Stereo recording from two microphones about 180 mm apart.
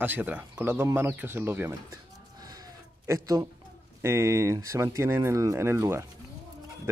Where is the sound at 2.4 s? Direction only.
20° right (ahead or behind).